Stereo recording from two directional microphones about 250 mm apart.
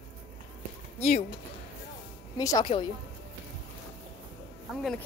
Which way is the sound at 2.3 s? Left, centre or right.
Centre.